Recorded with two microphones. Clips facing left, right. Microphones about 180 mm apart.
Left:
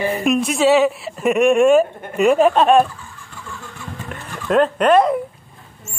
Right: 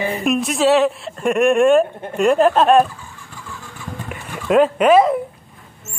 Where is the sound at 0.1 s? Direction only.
Centre (ahead or behind).